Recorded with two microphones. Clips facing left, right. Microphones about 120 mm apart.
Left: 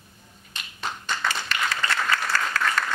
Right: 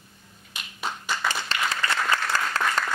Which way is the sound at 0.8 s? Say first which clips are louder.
Even; 5° right (ahead or behind).